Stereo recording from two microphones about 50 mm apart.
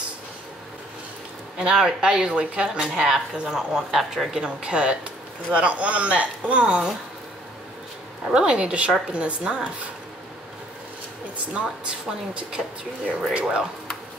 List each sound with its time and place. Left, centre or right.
1.6 s speech: centre
4.3 s speech: centre
8.3 s speech: centre
12.4 s speech: centre